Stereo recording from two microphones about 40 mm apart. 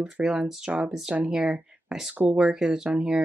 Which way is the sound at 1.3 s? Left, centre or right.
Centre.